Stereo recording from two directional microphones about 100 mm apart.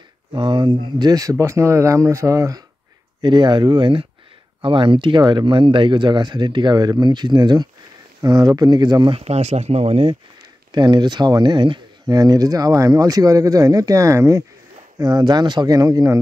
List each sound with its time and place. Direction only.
0.3 s speech: 50° right (ahead or behind); by 2.6 s 35° right (ahead or behind)
3.2 s speech: 50° right (ahead or behind)
9.1 s speech: 90° right
10.7 s speech: 45° right (ahead or behind)
15.0 s speech: 40° right (ahead or behind)